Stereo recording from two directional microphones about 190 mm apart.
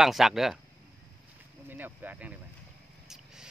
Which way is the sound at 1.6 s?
10° right (ahead or behind).